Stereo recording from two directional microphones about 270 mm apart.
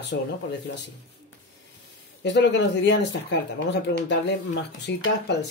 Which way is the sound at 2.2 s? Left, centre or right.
Left.